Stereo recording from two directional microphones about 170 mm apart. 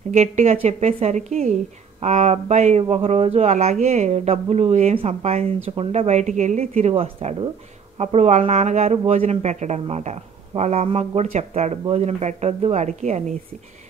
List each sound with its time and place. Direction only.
0.1 s speech: 40° right (ahead or behind)